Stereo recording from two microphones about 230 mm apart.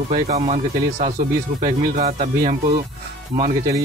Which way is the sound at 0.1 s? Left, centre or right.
Right.